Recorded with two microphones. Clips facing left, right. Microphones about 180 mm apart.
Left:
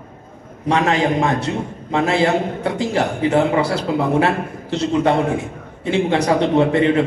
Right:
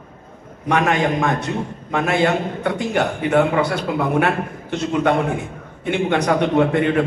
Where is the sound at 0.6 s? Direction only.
25° left (ahead or behind).